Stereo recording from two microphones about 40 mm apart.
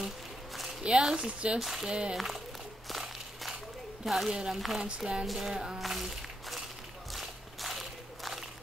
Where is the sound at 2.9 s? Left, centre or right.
Centre.